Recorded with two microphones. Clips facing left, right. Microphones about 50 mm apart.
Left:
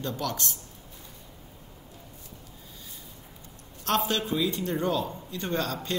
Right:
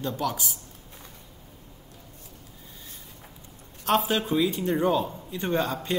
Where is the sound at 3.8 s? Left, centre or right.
Centre.